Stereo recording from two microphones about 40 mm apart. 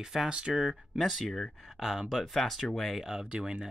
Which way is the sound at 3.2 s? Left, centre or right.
Right.